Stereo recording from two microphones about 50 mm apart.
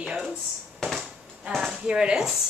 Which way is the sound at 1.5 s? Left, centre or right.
Centre.